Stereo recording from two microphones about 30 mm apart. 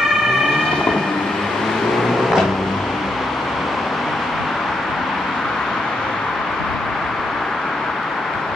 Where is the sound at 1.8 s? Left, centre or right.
Centre.